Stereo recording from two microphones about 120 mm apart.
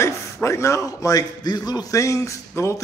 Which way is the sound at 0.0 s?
25° left (ahead or behind).